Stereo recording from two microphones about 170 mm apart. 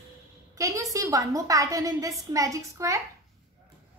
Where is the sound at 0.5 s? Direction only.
20° right (ahead or behind).